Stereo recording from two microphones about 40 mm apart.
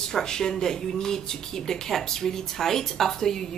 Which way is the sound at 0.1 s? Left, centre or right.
Centre.